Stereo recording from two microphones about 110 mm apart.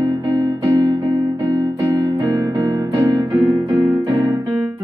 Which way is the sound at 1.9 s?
40° right (ahead or behind).